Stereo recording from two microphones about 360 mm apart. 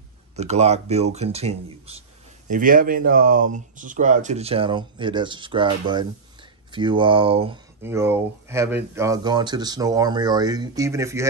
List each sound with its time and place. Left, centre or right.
0.4 s speech: centre